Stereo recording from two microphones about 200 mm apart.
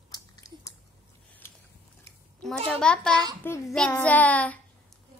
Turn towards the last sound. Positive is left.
turn(degrees=5)  # may be behind; listen again after turning